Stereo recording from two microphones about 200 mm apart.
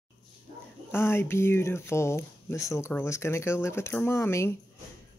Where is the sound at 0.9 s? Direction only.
10° left (ahead or behind).